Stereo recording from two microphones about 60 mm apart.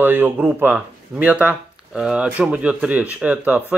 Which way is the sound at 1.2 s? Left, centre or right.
Right.